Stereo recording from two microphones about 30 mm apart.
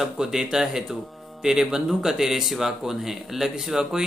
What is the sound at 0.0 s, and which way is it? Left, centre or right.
A man's voice, centre.